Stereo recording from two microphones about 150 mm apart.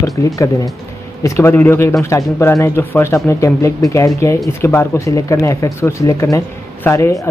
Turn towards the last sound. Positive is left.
turn(degrees=20)  # may be behind; listen again after turning